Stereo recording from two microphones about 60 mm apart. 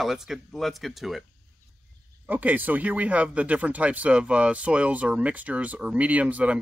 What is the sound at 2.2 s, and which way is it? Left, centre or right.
Speech, right.